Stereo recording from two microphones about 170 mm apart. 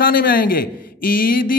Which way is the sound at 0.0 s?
60° left (ahead or behind).